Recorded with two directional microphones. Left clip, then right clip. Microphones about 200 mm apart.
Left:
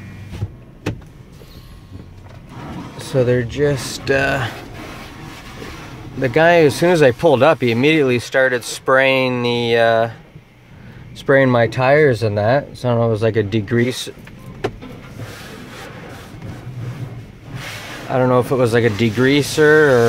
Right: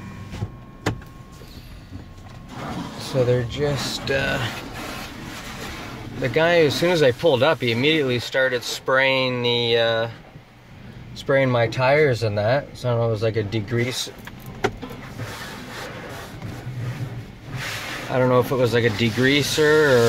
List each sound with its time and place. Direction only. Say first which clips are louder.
3.3 s speech: left 5 dB; 40° left (ahead or behind)
6.2 s speech: left 6 dB; 30° left (ahead or behind)
11.1 s speech: left 6 dB; 40° left (ahead or behind)
18.1 s speech: left 4 dB; 20° left (ahead or behind)